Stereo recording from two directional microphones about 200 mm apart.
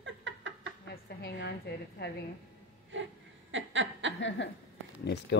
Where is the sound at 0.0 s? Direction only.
70° right (ahead or behind).